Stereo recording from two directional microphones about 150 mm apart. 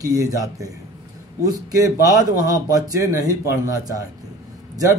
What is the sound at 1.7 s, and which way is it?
Speech, 20° right (ahead or behind).